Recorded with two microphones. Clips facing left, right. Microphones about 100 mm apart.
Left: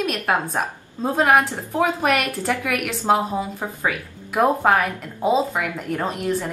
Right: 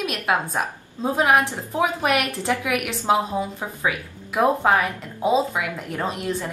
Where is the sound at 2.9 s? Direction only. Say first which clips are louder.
Left 2 dB; centre (ahead or behind).